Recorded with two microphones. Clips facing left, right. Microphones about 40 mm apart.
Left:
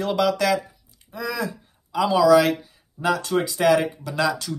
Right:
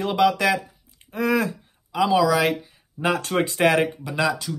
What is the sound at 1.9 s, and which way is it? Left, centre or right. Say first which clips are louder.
Speech: left 3 dB; centre.